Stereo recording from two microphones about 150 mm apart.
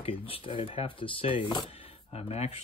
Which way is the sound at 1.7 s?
40° left (ahead or behind).